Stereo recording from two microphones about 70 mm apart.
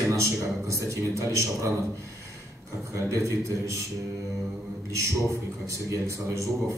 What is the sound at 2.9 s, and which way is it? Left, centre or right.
Speech, right.